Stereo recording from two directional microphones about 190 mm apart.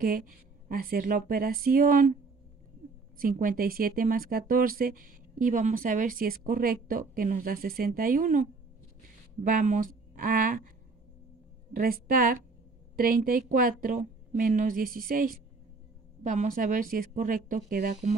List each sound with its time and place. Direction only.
0.0 s speech: 45° right (ahead or behind)
3.2 s speech: 45° right (ahead or behind)
11.7 s speech: 50° right (ahead or behind)